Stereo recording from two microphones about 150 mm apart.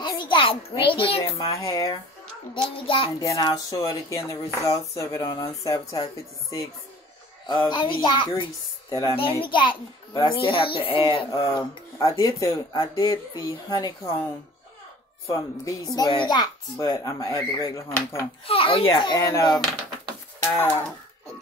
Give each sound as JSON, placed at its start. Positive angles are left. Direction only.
{"t": 0.0, "sound": "a child's voice", "side_deg": 30}
{"t": 1.5, "sound": "speech", "side_deg": 20}
{"t": 2.5, "sound": "a child's voice", "side_deg": 35}
{"t": 3.2, "sound": "speech", "side_deg": 25}
{"t": 7.4, "sound": "a child's voice", "side_deg": 30}
{"t": 15.2, "sound": "speech", "side_deg": 20}
{"t": 18.5, "sound": "a child's voice", "side_deg": 40}
{"t": 20.5, "sound": "a sound", "side_deg": 15}